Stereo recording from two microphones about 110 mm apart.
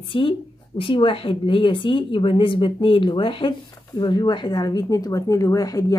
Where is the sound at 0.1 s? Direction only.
50° left (ahead or behind).